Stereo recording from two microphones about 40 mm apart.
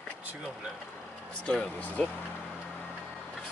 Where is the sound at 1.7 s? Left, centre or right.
Left.